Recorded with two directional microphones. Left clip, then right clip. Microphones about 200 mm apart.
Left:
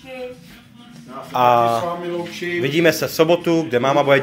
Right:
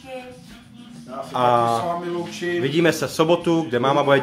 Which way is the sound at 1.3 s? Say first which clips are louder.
Left 3 dB; centre (ahead or behind).